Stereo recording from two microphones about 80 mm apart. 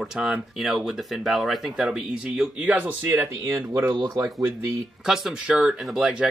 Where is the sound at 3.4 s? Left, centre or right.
Right.